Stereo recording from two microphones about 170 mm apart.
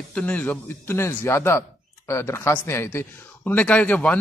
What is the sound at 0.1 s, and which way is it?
Speech, 10° left (ahead or behind).